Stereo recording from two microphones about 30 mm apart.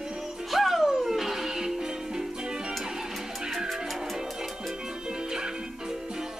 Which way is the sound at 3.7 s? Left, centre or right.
Centre.